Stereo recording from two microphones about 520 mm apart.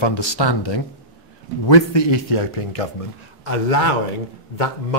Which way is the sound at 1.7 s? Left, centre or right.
Left.